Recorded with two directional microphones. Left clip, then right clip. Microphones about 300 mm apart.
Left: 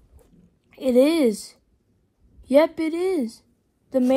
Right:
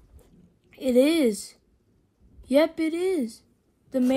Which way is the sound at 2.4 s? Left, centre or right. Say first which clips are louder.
Left 4 dB; left.